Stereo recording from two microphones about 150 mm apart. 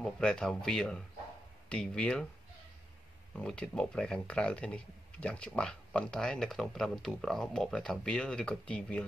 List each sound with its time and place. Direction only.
0.0 s speech: 5° left (ahead or behind)
3.3 s speech: 5° left (ahead or behind)